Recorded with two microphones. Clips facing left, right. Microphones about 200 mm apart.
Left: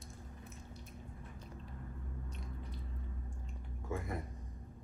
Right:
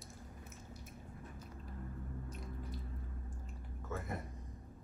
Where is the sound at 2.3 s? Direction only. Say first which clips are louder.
Right 2 dB; centre (ahead or behind).